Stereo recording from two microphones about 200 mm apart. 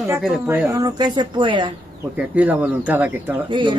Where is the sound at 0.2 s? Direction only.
5° right (ahead or behind); by 1.7 s 25° right (ahead or behind).